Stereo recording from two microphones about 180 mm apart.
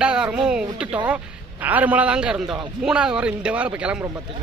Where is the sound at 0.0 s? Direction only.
5° right (ahead or behind).